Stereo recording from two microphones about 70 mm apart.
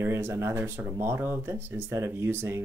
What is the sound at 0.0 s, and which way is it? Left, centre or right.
Speech, right.